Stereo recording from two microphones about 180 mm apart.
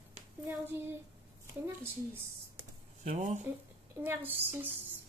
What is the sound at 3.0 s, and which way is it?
Speech, 45° right (ahead or behind).